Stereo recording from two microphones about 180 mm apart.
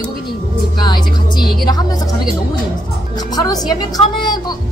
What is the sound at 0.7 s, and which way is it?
Speech, 25° left (ahead or behind).